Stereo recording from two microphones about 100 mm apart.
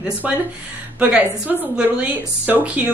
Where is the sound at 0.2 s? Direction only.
15° right (ahead or behind).